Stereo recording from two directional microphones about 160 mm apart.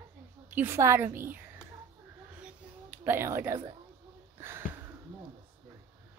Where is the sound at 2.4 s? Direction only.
10° right (ahead or behind).